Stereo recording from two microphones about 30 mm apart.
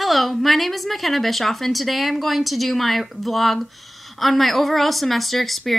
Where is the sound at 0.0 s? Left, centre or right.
Centre.